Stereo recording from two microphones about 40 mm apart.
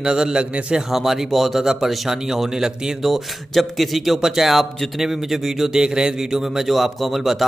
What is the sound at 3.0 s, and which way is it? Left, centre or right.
A man's voice, centre.